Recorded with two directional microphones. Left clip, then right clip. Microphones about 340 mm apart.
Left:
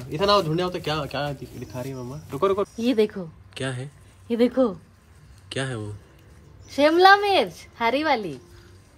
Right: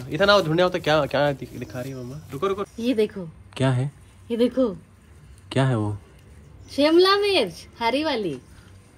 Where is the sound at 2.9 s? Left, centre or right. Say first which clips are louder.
Even; left.